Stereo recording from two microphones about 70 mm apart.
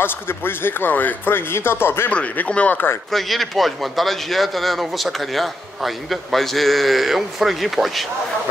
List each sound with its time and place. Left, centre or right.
0.0 s a man's voice: left
2.0 s speech: left
3.1 s speech: centre